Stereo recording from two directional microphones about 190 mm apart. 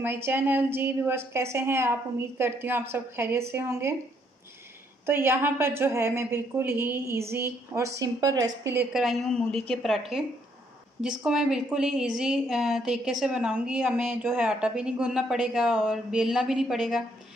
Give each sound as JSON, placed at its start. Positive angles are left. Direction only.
{"t": 0.0, "sound": "a woman's voice", "side_deg": -10}
{"t": 5.0, "sound": "a woman's voice", "side_deg": -10}
{"t": 8.9, "sound": "a woman's voice", "side_deg": 0}